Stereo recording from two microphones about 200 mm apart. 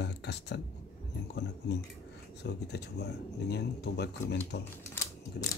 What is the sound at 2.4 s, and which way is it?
Speech, 55° left (ahead or behind).